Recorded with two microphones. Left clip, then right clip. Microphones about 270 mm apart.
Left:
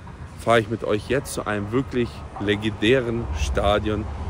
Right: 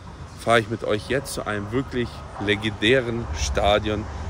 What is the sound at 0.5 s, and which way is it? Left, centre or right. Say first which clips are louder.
Speech: left 1 dB; centre.